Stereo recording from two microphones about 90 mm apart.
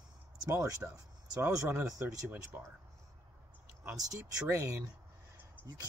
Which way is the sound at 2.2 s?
25° right (ahead or behind).